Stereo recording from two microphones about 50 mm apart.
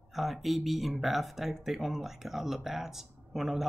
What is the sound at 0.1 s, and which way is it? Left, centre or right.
Speech, centre.